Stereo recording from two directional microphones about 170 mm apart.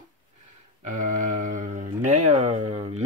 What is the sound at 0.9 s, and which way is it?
Mantra, 50° right (ahead or behind).